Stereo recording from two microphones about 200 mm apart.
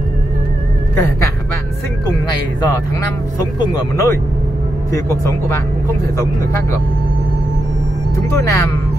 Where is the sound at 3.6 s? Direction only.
20° left (ahead or behind).